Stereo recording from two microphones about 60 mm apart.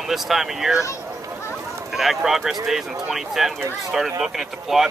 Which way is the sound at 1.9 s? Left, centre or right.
Centre.